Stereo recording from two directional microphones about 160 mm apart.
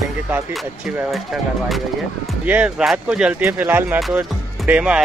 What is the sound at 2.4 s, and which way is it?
Speech, 10° right (ahead or behind).